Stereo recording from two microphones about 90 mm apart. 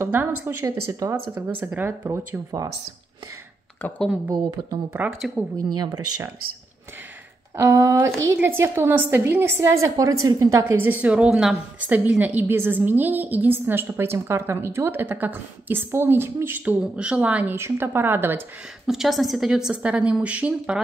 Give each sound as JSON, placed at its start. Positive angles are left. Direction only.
{"t": 0.0, "sound": "a woman's voice", "side_deg": -25}
{"t": 0.7, "sound": "speech", "side_deg": -35}
{"t": 1.6, "sound": "a woman's voice", "side_deg": -20}
{"t": 3.8, "sound": "speech", "side_deg": 20}
{"t": 4.3, "sound": "speech", "side_deg": -45}
{"t": 5.2, "sound": "a woman's voice", "side_deg": -5}
{"t": 5.8, "sound": "speech", "side_deg": -45}
{"t": 7.5, "sound": "a woman's voice", "side_deg": -30}
{"t": 17.6, "sound": "a woman's voice", "side_deg": -25}
{"t": 18.9, "sound": "a woman's voice", "side_deg": 0}